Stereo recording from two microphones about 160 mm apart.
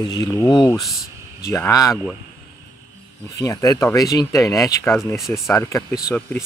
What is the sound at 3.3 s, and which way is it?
Speech, 20° left (ahead or behind).